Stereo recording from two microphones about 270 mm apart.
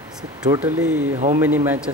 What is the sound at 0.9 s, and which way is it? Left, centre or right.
Speech, right.